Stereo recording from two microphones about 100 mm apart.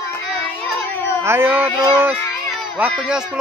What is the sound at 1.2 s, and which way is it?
Speech, 20° right (ahead or behind).